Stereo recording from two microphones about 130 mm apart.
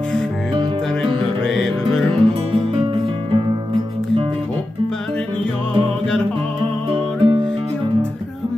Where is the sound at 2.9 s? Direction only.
45° right (ahead or behind).